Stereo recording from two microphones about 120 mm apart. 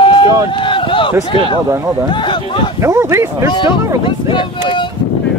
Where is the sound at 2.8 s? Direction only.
20° right (ahead or behind).